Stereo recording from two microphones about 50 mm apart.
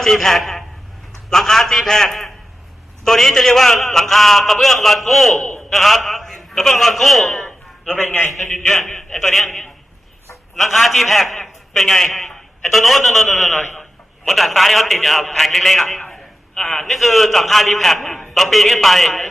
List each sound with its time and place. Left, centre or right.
0.0 s a man's voice: centre
7.9 s a man's voice: left
8.5 s a man's voice: centre
16.1 s a man's voice: centre